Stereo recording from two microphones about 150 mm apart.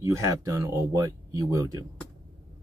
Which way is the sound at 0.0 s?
20° right (ahead or behind).